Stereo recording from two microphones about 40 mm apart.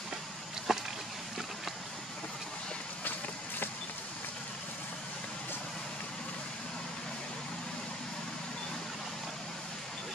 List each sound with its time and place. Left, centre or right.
0.7 s boat: centre
3.0 s run: left